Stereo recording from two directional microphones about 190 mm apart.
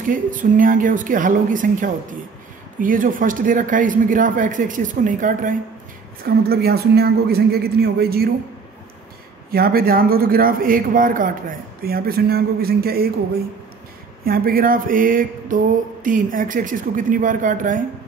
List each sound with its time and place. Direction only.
0.0 s a man's voice: 45° right (ahead or behind)
6.2 s speech: 55° right (ahead or behind)
9.5 s a man's voice: 50° right (ahead or behind)
14.2 s a man's voice: 50° right (ahead or behind)